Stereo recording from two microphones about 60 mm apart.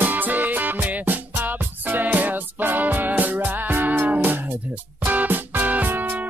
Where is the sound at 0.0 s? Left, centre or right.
Right.